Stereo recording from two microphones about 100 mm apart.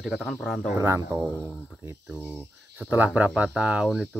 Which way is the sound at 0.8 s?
25° right (ahead or behind).